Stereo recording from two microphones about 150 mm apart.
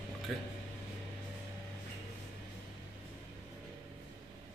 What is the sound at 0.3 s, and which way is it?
Speech, centre (ahead or behind).